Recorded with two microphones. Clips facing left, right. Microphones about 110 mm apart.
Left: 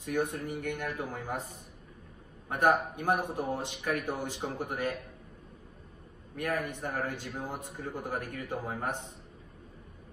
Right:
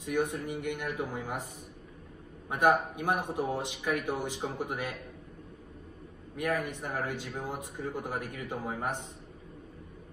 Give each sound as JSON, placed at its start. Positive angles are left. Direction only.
{"t": 0.0, "sound": "speech", "side_deg": -15}
{"t": 2.5, "sound": "speech", "side_deg": -15}
{"t": 6.3, "sound": "speech", "side_deg": -15}